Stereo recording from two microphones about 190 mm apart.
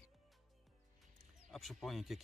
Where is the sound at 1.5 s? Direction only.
Centre (ahead or behind).